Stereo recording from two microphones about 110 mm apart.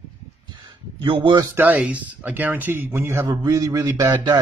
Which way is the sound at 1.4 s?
20° right (ahead or behind).